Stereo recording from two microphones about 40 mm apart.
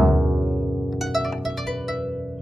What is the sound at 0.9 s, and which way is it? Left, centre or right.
Harp, centre.